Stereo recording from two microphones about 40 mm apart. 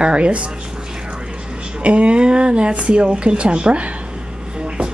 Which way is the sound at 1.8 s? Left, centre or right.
Right.